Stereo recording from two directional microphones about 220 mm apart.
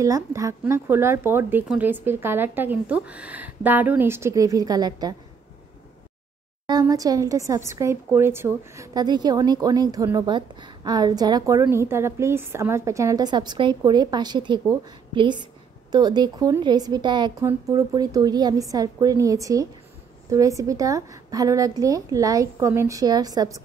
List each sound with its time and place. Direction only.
0.0 s speech: 15° right (ahead or behind)
6.7 s speech: 15° right (ahead or behind)